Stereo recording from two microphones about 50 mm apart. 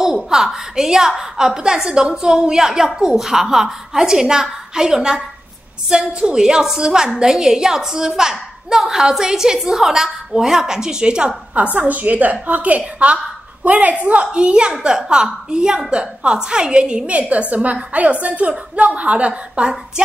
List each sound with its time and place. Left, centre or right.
0.0 s a woman's voice: centre
11.9 s a woman's voice: right